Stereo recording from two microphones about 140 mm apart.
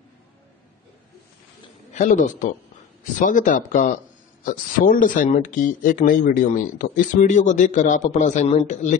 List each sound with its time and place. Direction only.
2.0 s a man's voice: 65° left (ahead or behind)